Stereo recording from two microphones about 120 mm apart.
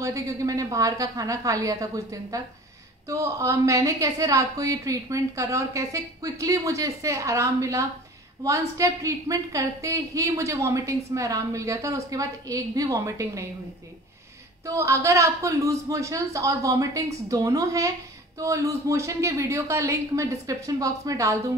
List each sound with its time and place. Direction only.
0.0 s a woman's voice: 25° right (ahead or behind)
14.7 s a woman's voice: 25° right (ahead or behind)